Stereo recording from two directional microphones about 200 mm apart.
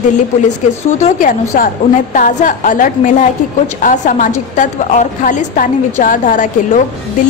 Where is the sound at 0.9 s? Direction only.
35° left (ahead or behind).